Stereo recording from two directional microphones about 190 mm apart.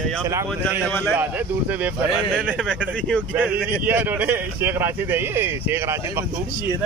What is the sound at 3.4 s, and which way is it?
Speech, 10° right (ahead or behind).